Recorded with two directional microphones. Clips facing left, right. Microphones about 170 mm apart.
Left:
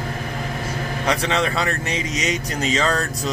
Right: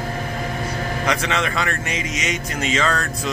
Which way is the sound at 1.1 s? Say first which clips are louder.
Left 2 dB; 35° left (ahead or behind).